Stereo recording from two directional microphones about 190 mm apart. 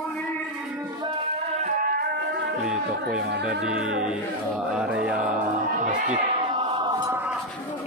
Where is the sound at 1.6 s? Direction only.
45° right (ahead or behind).